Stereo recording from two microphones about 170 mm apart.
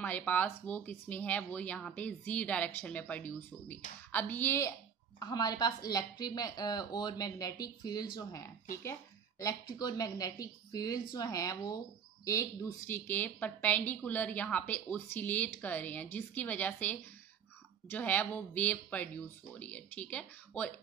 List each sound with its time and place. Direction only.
0.0 s speech: 10° left (ahead or behind)